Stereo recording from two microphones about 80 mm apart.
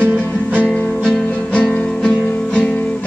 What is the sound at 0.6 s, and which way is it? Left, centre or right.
Music, centre.